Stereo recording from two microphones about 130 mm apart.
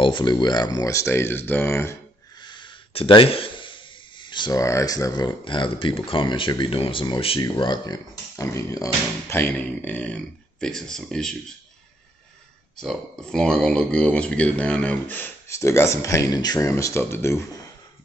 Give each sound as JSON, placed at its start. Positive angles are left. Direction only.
{"t": 0.0, "sound": "speech", "side_deg": 35}
{"t": 2.4, "sound": "speech", "side_deg": 35}
{"t": 12.8, "sound": "speech", "side_deg": 0}